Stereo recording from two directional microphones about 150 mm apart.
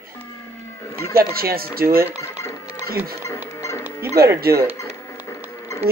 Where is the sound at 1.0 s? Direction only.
90° right.